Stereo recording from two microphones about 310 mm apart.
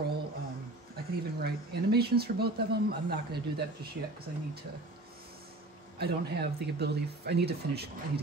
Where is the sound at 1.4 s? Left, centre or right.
Right.